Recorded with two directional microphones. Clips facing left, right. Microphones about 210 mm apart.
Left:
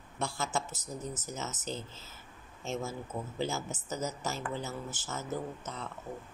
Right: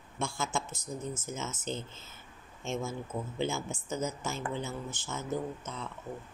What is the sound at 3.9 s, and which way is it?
Speech, 40° left (ahead or behind).